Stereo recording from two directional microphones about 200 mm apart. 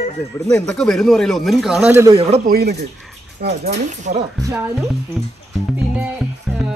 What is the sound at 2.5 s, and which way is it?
Speech, 55° right (ahead or behind).